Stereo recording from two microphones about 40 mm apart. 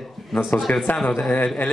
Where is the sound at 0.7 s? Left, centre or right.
Left.